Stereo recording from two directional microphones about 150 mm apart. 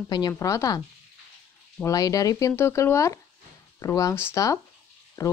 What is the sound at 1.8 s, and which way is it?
A woman's voice, 25° left (ahead or behind).